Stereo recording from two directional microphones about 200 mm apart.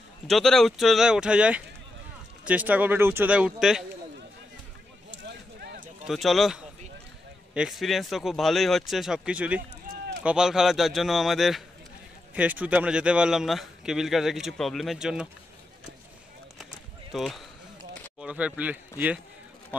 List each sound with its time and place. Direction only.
0.3 s speech: centre (ahead or behind)
5.1 s a sound: 55° right (ahead or behind)
6.0 s speech: centre (ahead or behind)
9.9 s a sound: 45° right (ahead or behind)
10.2 s speech: 5° right (ahead or behind)
17.1 s speech: centre (ahead or behind)